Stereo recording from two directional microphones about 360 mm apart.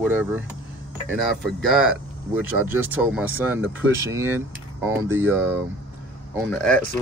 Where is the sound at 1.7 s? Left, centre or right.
Centre.